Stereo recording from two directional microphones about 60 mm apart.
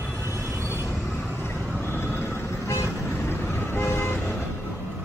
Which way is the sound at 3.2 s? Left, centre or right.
Left.